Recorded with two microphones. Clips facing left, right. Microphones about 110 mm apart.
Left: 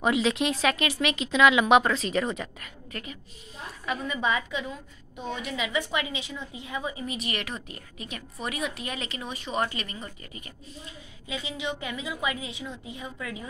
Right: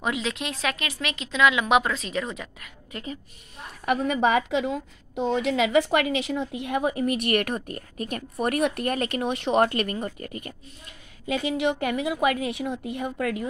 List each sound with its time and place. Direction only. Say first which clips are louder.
0.0 s speech: left 4 dB; centre (ahead or behind)
2.9 s a woman's voice: right 3 dB; 20° right (ahead or behind)
3.8 s a woman's voice: right 7 dB; 65° right (ahead or behind)